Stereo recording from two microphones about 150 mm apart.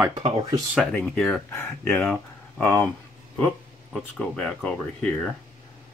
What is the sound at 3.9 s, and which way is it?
Speech, 5° left (ahead or behind).